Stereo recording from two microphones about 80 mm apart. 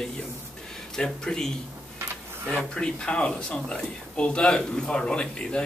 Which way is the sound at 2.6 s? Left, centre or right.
Centre.